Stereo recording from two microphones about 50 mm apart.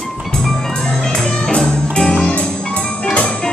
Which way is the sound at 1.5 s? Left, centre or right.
Centre.